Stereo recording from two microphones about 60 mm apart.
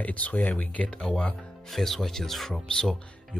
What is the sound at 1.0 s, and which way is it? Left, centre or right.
Speech, centre.